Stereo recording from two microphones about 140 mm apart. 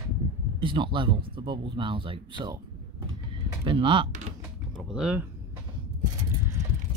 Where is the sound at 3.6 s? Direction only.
35° right (ahead or behind).